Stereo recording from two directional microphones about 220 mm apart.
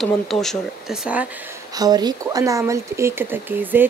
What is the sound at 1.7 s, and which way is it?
Speech, 15° right (ahead or behind).